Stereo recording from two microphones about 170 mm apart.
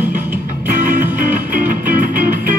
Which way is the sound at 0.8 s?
50° right (ahead or behind).